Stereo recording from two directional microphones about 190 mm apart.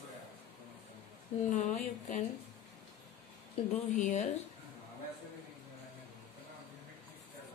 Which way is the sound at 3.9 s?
40° left (ahead or behind).